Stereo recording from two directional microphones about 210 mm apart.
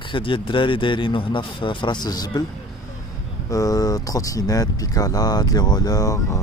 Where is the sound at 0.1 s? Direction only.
25° left (ahead or behind).